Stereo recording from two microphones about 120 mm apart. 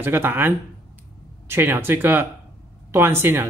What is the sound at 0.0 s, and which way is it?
Speech, 20° right (ahead or behind).